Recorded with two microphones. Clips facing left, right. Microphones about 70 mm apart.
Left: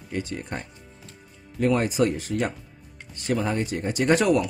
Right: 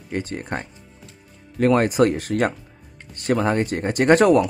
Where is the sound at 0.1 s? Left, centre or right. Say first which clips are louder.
Right 4 dB; right.